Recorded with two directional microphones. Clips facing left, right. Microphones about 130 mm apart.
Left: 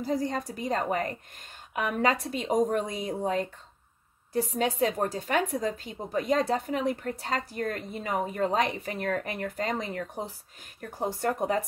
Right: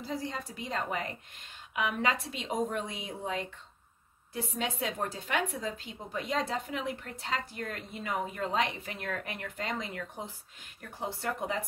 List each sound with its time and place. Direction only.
0.0 s a woman's voice: 45° left (ahead or behind)